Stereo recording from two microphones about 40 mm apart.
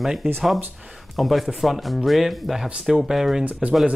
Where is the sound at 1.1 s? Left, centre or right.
Centre.